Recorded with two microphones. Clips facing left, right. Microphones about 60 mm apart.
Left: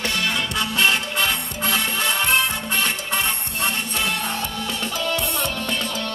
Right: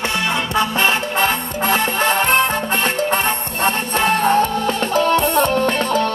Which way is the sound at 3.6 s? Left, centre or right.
Right.